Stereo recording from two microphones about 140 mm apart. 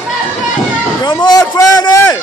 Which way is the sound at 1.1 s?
30° left (ahead or behind).